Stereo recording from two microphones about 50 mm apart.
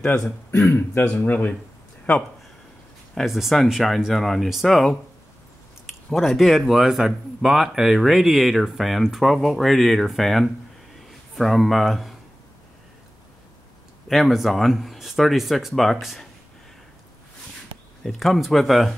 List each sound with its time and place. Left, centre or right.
0.7 s speech: left
1.0 s speech: left
3.3 s speech: centre
6.1 s speech: centre
14.0 s speech: centre
18.0 s speech: centre